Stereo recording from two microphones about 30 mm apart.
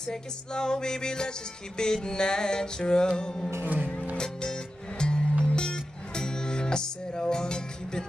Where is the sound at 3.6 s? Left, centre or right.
Right.